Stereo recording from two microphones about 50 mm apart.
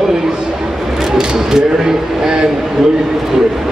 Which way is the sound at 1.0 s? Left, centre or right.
Centre.